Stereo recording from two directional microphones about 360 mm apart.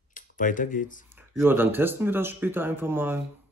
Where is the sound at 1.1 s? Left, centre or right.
Centre.